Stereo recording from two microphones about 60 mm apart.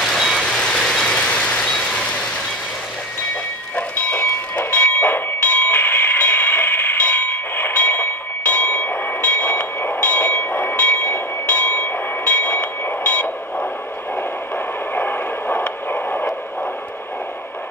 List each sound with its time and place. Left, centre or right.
0.0 s reversing beeps: centre
0.4 s vehicle: centre
3.7 s train: left
12.8 s radio: left
15.0 s a sound: left